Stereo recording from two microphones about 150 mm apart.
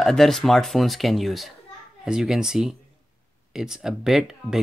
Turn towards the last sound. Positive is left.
turn(degrees=-5)  # may be behind; listen again after turning